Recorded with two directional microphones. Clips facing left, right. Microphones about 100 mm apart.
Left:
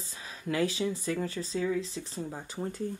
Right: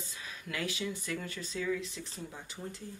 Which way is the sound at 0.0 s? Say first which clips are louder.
Left 5 dB; 30° left (ahead or behind).